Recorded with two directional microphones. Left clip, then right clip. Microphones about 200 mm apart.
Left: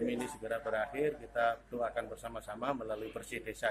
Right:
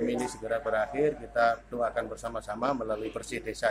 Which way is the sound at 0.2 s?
10° left (ahead or behind).